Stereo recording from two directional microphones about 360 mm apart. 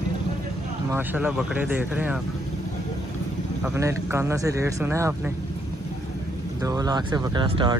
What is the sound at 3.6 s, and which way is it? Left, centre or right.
Speech, centre.